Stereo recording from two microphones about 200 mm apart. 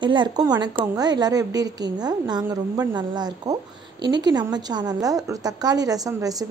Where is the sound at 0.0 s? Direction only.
25° right (ahead or behind).